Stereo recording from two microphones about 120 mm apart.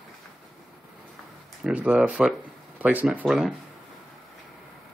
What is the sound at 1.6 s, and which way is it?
Speech, 10° right (ahead or behind).